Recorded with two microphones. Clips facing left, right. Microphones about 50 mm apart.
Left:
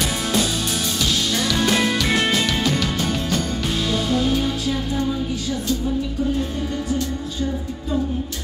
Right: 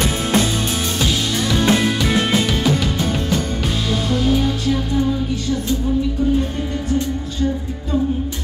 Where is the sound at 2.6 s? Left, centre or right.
Centre.